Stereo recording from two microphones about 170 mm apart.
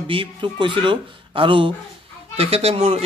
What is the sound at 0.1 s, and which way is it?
A man's voice, 30° right (ahead or behind).